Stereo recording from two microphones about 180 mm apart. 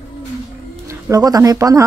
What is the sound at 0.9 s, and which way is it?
Speech, 20° right (ahead or behind).